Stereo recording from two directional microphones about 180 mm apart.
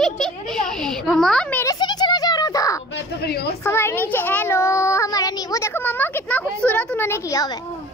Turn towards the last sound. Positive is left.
turn(degrees=20)  # may be behind; listen again after turning